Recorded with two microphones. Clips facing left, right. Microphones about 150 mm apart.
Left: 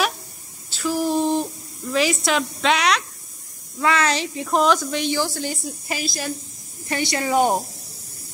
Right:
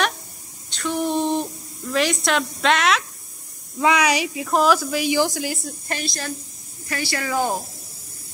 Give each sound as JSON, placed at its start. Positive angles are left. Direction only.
{"t": 0.7, "sound": "a sound", "side_deg": 5}
{"t": 3.8, "sound": "a woman's voice", "side_deg": -15}
{"t": 5.9, "sound": "a woman's voice", "side_deg": 5}
{"t": 6.9, "sound": "speech", "side_deg": 20}